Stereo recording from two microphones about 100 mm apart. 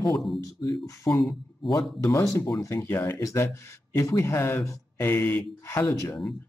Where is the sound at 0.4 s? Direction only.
35° left (ahead or behind).